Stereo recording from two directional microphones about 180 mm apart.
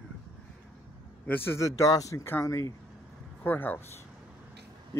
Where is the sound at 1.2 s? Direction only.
10° left (ahead or behind).